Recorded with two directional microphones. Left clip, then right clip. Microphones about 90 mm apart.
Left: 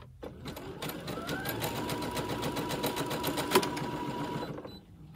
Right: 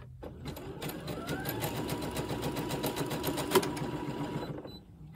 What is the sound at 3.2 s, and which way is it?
Sewing machine, 25° left (ahead or behind).